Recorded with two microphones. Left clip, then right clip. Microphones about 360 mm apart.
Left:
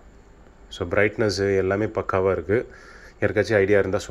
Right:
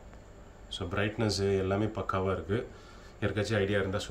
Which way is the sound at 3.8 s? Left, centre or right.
Centre.